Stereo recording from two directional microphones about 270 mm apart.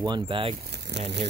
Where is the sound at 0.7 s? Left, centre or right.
Right.